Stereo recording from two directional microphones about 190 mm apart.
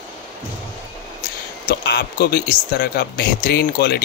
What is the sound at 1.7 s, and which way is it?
Speech, 55° left (ahead or behind).